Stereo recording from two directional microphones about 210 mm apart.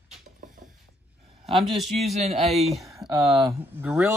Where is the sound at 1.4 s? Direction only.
Centre (ahead or behind).